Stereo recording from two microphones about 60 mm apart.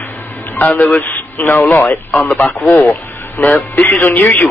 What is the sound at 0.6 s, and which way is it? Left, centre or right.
Speech, left.